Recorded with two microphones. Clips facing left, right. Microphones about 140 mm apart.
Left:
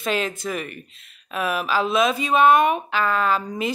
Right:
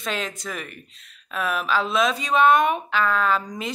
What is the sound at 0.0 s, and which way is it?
Speech, 5° left (ahead or behind).